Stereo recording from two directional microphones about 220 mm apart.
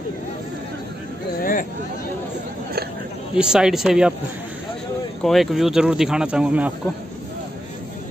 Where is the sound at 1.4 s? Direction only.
40° left (ahead or behind).